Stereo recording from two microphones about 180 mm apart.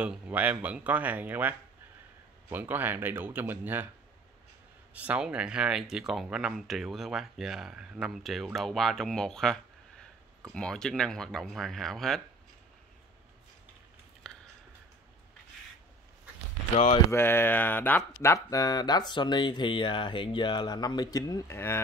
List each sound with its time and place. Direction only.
0.0 s speech: 5° right (ahead or behind)
2.5 s speech: 10° right (ahead or behind)
4.9 s speech: 5° right (ahead or behind)
14.2 s a sound: 5° left (ahead or behind)
16.7 s speech: 35° left (ahead or behind)
17.1 s speech: 10° left (ahead or behind)